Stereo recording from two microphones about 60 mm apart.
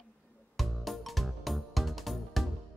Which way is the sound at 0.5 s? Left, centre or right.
Centre.